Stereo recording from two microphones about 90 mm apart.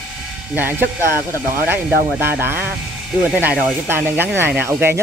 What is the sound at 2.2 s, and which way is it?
Speech, 25° right (ahead or behind).